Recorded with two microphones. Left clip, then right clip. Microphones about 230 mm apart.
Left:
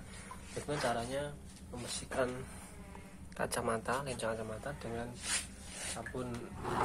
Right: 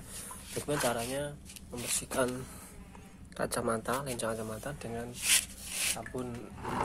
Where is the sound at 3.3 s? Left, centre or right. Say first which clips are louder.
Right 3 dB; right.